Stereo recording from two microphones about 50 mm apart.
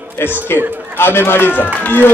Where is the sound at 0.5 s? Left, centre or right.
Right.